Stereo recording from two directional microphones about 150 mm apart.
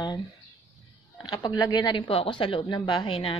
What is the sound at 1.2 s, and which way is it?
Speech, 30° left (ahead or behind).